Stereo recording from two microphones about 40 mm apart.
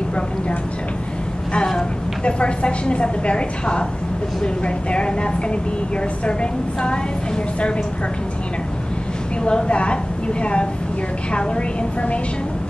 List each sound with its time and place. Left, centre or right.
2.2 s a woman's voice: left
9.5 s a woman's voice: left